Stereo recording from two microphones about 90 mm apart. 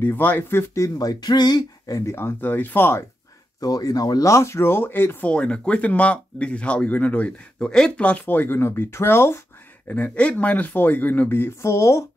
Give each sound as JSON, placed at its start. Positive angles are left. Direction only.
{"t": 0.0, "sound": "speech", "side_deg": 20}
{"t": 1.9, "sound": "speech", "side_deg": 35}
{"t": 3.6, "sound": "speech", "side_deg": 45}
{"t": 4.3, "sound": "speech", "side_deg": 30}
{"t": 5.3, "sound": "speech", "side_deg": 10}